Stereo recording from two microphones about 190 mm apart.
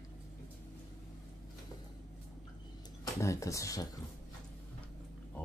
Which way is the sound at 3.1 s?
15° left (ahead or behind).